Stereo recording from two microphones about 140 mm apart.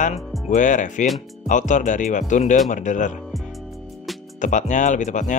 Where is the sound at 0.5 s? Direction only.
65° left (ahead or behind).